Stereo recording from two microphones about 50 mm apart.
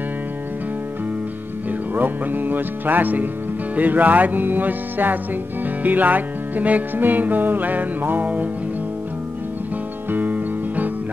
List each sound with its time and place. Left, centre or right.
2.0 s music: right
10.1 s music: right